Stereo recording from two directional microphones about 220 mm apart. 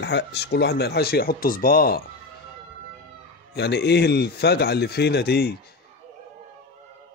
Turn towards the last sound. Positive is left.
turn(degrees=45)  # may be behind; listen again after turning